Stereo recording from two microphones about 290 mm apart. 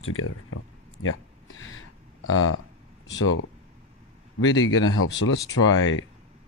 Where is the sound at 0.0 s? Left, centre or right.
Left.